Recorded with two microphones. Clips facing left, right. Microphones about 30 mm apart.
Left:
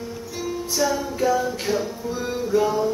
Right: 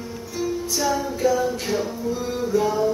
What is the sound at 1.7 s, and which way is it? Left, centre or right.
Music, centre.